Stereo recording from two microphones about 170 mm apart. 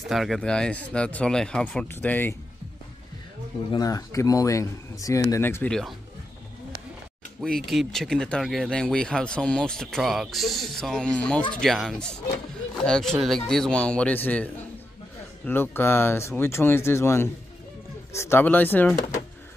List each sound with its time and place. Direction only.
0.1 s speech: centre (ahead or behind)
3.7 s speech: 20° left (ahead or behind); by 5.9 s 5° left (ahead or behind)
7.4 s speech: centre (ahead or behind)